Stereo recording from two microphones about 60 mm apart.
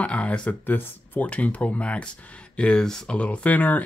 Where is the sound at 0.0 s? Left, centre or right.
Left.